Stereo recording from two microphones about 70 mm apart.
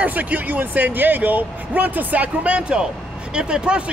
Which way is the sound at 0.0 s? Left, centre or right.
Right.